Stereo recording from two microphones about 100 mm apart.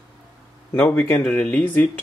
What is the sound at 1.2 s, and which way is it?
Speech, 10° left (ahead or behind).